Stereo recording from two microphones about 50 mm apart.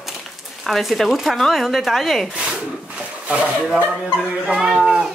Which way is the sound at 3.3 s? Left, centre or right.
Right.